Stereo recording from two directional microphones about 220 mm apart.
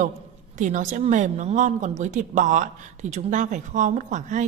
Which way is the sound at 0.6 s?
35° right (ahead or behind).